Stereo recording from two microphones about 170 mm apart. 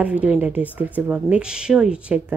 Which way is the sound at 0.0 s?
10° right (ahead or behind).